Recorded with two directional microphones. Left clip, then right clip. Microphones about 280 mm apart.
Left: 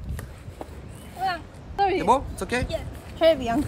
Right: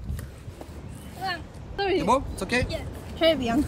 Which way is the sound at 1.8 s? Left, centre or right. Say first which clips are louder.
Left 3 dB; centre.